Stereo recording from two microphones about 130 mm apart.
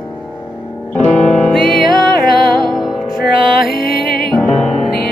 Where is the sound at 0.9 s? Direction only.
5° left (ahead or behind).